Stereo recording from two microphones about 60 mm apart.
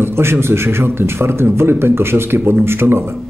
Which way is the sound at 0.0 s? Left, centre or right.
Right.